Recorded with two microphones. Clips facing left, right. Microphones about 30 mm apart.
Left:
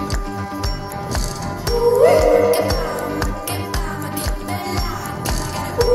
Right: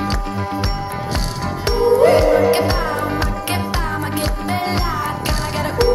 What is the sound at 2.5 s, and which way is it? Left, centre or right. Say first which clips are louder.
Music: right 1 dB; right.